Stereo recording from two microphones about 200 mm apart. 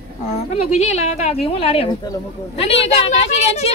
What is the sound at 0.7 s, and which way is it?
A woman's voice, 35° left (ahead or behind).